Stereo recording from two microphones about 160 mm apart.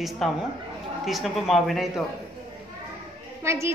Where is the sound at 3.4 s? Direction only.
15° right (ahead or behind).